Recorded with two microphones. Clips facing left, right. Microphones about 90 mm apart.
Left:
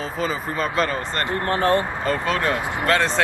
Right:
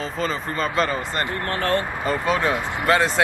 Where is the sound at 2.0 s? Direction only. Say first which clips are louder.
Right 3 dB; 10° right (ahead or behind).